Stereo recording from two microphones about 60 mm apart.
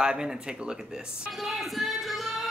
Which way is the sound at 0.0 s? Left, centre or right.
Centre.